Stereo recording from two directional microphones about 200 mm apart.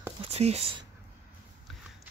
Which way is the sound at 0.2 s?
30° right (ahead or behind).